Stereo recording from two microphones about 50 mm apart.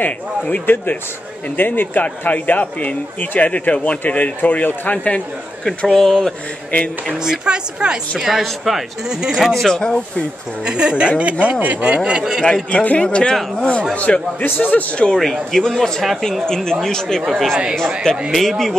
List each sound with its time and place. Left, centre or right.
0.0 s speech: left
5.8 s a man's voice: centre
7.2 s a woman's voice: centre
8.2 s a woman's voice: centre
9.1 s a woman's voice: centre
9.5 s a man's voice: centre
10.6 s a woman's voice: centre
12.7 s speech: left
15.1 s a man's voice: centre